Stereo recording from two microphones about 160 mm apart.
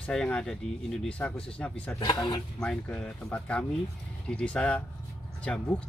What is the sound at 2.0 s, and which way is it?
Speech, 25° left (ahead or behind).